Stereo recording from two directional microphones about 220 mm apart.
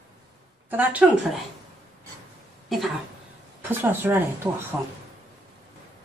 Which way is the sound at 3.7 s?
10° right (ahead or behind).